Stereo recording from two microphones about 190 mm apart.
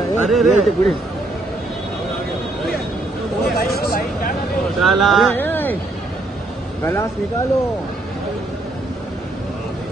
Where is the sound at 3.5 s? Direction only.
55° left (ahead or behind).